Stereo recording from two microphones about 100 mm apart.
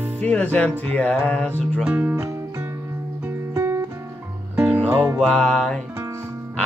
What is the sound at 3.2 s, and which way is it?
Guitar, 25° right (ahead or behind).